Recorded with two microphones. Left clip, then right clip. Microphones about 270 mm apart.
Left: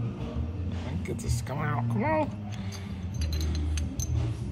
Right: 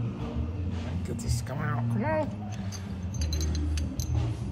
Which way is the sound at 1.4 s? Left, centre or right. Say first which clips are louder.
Left 3 dB; centre.